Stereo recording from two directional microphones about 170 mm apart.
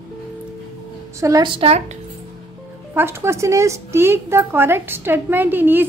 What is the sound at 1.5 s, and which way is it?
Speech, 35° right (ahead or behind).